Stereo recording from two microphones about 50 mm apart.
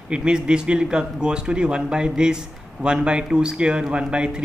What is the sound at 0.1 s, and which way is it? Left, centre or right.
Speech, centre.